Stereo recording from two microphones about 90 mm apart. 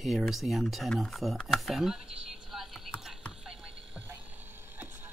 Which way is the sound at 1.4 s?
Centre (ahead or behind).